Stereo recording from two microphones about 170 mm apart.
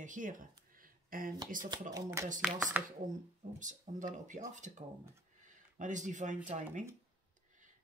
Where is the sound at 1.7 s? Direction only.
20° right (ahead or behind).